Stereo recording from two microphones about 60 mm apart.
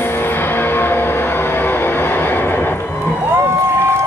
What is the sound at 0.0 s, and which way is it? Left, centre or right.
Music, left.